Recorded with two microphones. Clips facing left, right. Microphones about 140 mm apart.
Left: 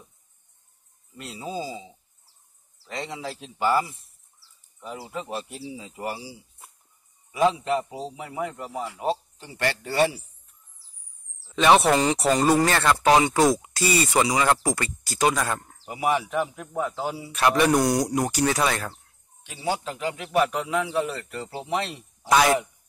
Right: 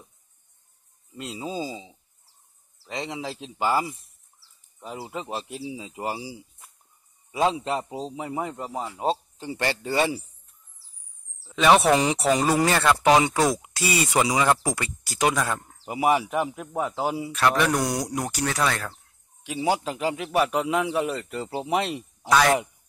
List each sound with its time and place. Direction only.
1.1 s a man's voice: 20° right (ahead or behind)
2.9 s a man's voice: 20° right (ahead or behind)
5.8 s a man's voice: 20° right (ahead or behind)
7.3 s a man's voice: 25° right (ahead or behind)
11.5 s speech: centre (ahead or behind)
15.3 s speech: 5° left (ahead or behind)
15.9 s speech: 10° right (ahead or behind)
17.5 s speech: 10° left (ahead or behind)
19.4 s speech: 10° right (ahead or behind)
22.3 s speech: 10° left (ahead or behind)